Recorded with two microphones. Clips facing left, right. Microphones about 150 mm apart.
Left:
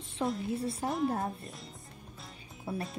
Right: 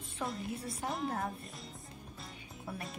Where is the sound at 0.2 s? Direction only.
20° left (ahead or behind).